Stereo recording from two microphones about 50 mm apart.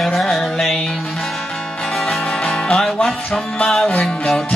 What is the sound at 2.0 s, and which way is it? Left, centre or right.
Music, centre.